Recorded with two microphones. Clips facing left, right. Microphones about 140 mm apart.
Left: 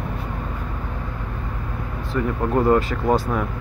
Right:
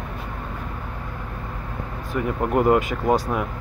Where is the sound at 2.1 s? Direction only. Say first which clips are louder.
Left 1 dB; 15° right (ahead or behind).